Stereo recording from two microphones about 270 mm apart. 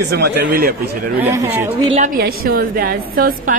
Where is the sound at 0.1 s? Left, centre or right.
Right.